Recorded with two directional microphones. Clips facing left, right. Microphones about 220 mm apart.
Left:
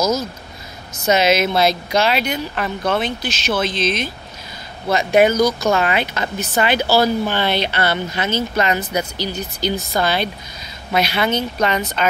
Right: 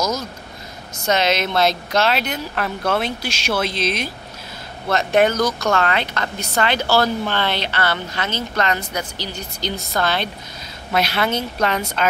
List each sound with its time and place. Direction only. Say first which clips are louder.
0.0 s speech: left 4 dB; 5° left (ahead or behind)
4.8 s speech: left 2 dB; centre (ahead or behind)
5.7 s speech: left 2 dB; 15° left (ahead or behind); by 12.1 s centre (ahead or behind)